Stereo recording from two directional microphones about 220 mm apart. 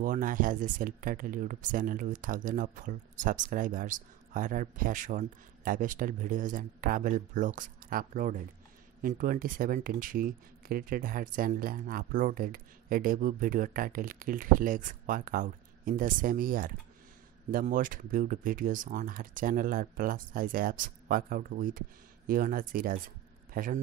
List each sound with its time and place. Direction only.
0.0 s speech: 35° right (ahead or behind)